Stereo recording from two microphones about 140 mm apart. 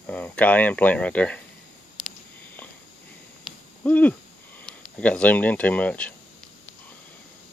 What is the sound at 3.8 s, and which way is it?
Speech, 10° left (ahead or behind).